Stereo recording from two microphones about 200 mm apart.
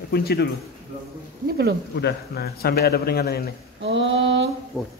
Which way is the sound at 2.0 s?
55° left (ahead or behind).